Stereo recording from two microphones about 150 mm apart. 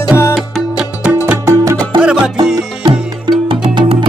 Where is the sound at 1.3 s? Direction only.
20° right (ahead or behind).